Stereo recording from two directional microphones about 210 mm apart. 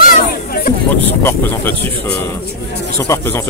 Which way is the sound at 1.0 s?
10° left (ahead or behind).